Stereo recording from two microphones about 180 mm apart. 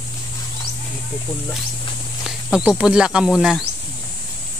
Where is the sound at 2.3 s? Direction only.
5° right (ahead or behind).